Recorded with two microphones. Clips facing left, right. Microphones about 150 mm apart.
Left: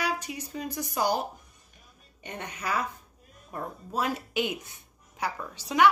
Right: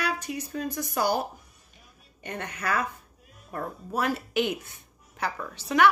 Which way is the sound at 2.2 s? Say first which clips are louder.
Right 3 dB; 15° left (ahead or behind).